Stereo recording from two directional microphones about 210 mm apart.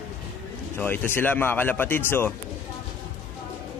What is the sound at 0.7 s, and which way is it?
Speech, 10° left (ahead or behind).